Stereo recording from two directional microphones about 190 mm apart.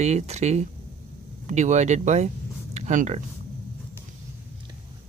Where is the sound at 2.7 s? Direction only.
40° right (ahead or behind).